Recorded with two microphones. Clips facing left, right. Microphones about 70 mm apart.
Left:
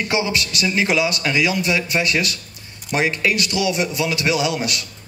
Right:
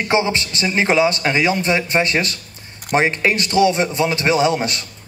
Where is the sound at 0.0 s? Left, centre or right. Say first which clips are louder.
Right 3 dB; right.